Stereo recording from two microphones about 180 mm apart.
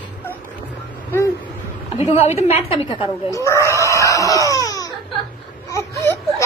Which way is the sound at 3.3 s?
15° left (ahead or behind).